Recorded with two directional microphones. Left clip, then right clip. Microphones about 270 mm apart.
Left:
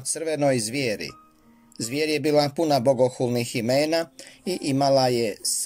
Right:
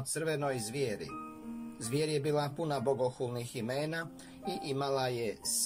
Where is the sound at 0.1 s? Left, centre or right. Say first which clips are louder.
Left 11 dB; left.